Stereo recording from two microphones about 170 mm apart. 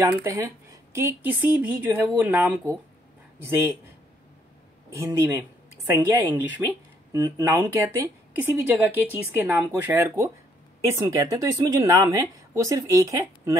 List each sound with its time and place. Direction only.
0.1 s speech: 15° right (ahead or behind)
4.9 s a woman's voice: 15° right (ahead or behind)